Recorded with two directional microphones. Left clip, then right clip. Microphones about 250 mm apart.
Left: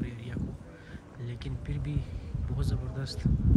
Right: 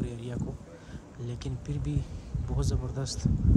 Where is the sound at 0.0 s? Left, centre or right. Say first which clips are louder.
Right 3 dB; centre.